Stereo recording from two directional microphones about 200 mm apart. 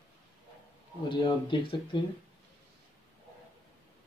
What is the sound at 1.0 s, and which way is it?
Speech, 25° left (ahead or behind).